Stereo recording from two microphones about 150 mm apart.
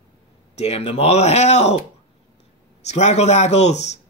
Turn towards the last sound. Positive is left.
turn(degrees=50)  # may be behind; listen again after turning